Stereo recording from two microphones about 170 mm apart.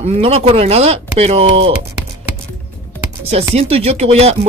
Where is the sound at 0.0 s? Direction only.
40° right (ahead or behind).